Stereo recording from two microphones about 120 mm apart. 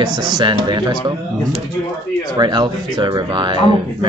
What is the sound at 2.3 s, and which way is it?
Speech, 40° right (ahead or behind).